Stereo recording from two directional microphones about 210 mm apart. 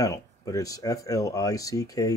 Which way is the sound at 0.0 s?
15° left (ahead or behind).